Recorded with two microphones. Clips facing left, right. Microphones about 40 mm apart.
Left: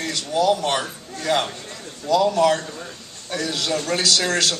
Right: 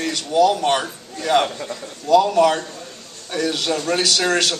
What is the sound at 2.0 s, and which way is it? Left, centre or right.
A man's voice, right.